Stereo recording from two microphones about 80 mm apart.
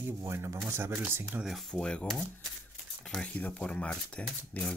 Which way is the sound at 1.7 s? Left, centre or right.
Centre.